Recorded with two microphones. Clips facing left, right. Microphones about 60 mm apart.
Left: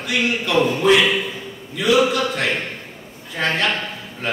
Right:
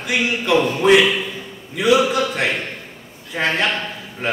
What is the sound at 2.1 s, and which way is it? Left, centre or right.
A man's voice, centre.